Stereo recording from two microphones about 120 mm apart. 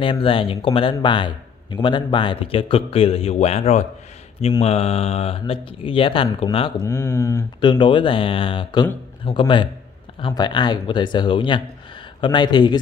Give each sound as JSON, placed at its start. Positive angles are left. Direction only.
{"t": 0.0, "sound": "a man's voice", "side_deg": 45}
{"t": 6.8, "sound": "speech", "side_deg": 20}
{"t": 7.6, "sound": "a man's voice", "side_deg": 40}